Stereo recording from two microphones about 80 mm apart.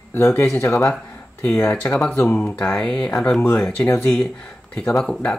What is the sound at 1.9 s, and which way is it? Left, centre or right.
Speech, centre.